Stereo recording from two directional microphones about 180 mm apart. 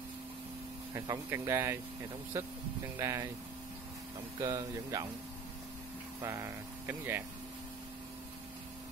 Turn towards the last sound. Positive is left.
turn(degrees=-10)  # may be behind; listen again after turning